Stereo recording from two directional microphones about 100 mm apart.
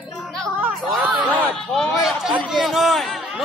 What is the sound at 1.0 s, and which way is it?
Speech, 15° right (ahead or behind).